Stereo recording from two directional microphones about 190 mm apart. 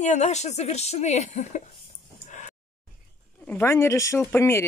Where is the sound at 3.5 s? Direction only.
10° left (ahead or behind).